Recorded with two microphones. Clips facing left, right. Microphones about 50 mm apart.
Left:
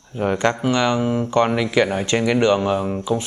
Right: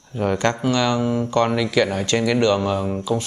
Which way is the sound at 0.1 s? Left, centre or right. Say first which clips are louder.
Left 1 dB; centre.